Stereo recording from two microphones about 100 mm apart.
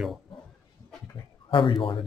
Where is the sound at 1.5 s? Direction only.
60° left (ahead or behind).